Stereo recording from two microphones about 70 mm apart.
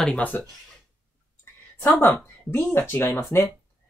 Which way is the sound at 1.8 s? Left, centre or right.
Left.